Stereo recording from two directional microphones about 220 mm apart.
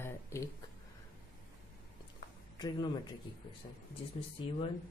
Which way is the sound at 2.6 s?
20° left (ahead or behind).